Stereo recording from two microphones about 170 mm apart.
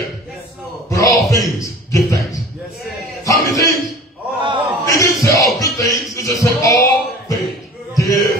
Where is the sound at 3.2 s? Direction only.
20° left (ahead or behind).